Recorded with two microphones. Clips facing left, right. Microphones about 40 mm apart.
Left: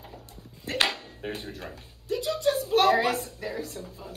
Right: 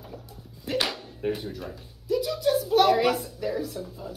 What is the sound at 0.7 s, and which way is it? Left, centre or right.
Speech, left.